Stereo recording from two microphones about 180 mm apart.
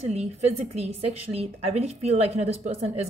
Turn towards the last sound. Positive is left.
turn(degrees=-35)  # may be behind; listen again after turning